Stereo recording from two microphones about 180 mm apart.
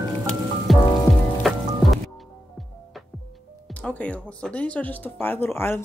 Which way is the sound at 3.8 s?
10° left (ahead or behind).